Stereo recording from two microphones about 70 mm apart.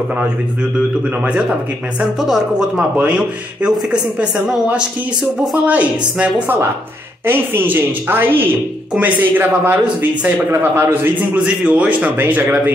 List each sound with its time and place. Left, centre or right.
0.7 s speech: centre
2.1 s speech: centre
5.5 s a man's voice: right
10.5 s a woman's voice: right
10.9 s a man's voice: right